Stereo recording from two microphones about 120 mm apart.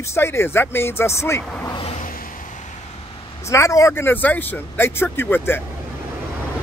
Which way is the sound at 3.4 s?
25° left (ahead or behind).